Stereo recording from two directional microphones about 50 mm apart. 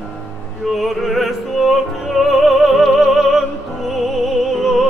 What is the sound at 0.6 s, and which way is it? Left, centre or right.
Opera, centre.